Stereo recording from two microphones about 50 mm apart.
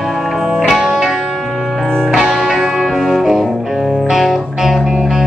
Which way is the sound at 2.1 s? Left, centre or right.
Centre.